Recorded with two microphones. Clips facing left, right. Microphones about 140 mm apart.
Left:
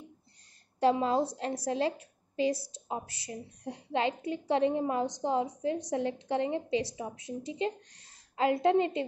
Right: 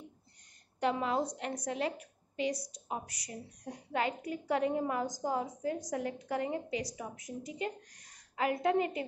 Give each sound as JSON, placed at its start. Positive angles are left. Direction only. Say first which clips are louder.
{"t": 0.9, "sound": "a woman's voice", "louder": "left 4 dB", "side_deg": 30}